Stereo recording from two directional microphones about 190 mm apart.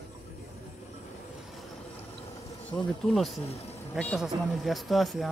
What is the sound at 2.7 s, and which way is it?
Speech, centre (ahead or behind).